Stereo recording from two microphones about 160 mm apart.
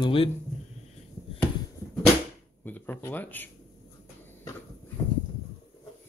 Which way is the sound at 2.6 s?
10° left (ahead or behind).